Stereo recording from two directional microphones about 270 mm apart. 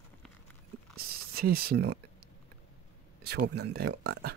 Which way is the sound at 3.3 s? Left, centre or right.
Right.